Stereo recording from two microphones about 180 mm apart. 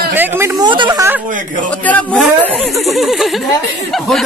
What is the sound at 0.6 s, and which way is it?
Speech, 25° right (ahead or behind).